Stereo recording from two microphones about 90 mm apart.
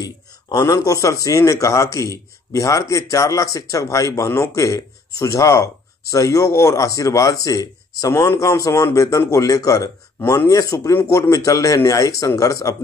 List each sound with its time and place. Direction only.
0.0 s speech: 40° left (ahead or behind)